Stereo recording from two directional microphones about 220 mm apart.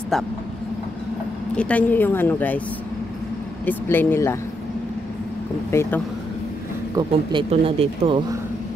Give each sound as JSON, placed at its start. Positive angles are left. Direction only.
{"t": 1.6, "sound": "a woman's voice", "side_deg": 5}
{"t": 3.6, "sound": "a woman's voice", "side_deg": 10}
{"t": 5.7, "sound": "a woman's voice", "side_deg": 10}
{"t": 7.0, "sound": "speech", "side_deg": -20}